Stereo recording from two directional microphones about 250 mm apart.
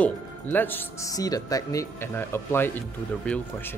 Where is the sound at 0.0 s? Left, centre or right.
Centre.